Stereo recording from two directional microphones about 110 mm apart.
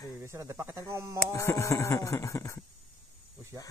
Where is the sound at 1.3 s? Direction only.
25° left (ahead or behind).